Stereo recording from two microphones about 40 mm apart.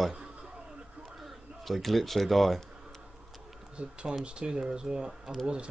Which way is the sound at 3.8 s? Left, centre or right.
Right.